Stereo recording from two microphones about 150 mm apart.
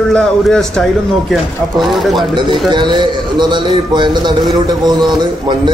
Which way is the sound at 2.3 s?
30° right (ahead or behind).